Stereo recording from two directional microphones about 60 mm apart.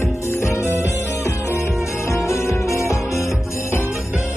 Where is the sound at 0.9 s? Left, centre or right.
Left.